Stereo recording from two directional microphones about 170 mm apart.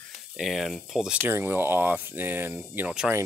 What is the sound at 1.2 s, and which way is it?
Speech, 15° right (ahead or behind).